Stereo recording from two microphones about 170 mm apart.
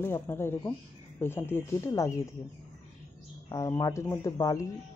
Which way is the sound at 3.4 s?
20° left (ahead or behind).